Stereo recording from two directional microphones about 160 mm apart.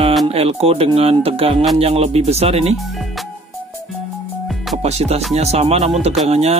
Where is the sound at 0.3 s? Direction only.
40° right (ahead or behind).